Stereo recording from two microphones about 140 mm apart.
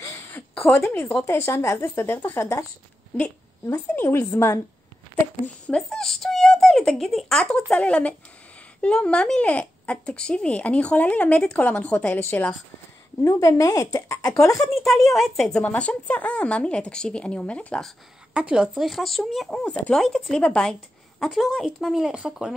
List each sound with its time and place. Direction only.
0.6 s a woman's voice: centre (ahead or behind)
0.8 s speech: 20° left (ahead or behind)
3.6 s speech: 15° left (ahead or behind)
14.9 s speech: centre (ahead or behind)
18.3 s speech: 5° right (ahead or behind)